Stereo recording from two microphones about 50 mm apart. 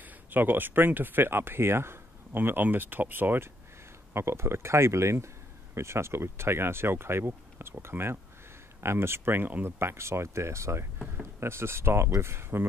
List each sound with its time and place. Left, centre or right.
0.0 s speech: right
4.1 s speech: right
9.7 s speech: right
11.3 s speech: right